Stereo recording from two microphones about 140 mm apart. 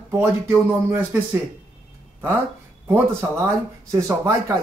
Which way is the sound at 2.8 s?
20° right (ahead or behind).